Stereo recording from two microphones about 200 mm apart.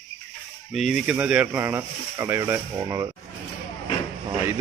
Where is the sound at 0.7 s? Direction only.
Centre (ahead or behind); by 3.1 s 15° right (ahead or behind).